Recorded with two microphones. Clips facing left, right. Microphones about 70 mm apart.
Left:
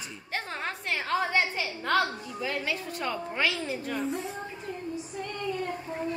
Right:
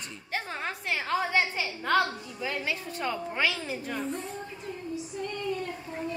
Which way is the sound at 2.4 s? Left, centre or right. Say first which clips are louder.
Even; centre.